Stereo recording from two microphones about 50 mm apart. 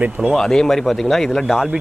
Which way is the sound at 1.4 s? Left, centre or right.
Centre.